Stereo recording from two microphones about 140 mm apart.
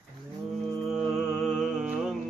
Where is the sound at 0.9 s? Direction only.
Centre (ahead or behind).